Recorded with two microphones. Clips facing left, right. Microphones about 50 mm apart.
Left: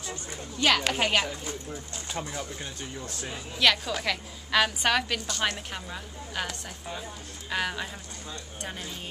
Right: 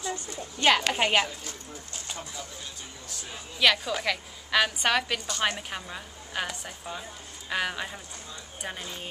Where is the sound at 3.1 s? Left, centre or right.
Left.